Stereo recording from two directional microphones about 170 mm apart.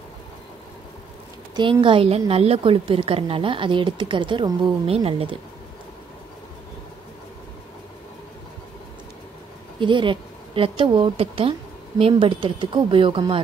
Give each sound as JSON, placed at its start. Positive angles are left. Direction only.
{"t": 1.5, "sound": "a woman's voice", "side_deg": -30}
{"t": 9.8, "sound": "a woman's voice", "side_deg": -30}